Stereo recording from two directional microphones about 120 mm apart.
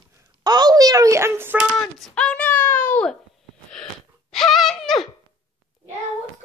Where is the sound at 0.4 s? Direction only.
35° right (ahead or behind).